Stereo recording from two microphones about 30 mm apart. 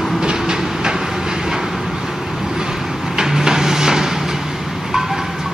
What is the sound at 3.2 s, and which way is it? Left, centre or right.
Wood, centre.